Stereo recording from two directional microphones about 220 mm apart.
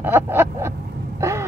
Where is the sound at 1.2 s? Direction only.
10° right (ahead or behind).